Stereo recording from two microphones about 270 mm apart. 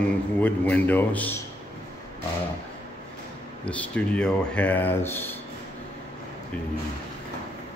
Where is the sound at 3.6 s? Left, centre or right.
Centre.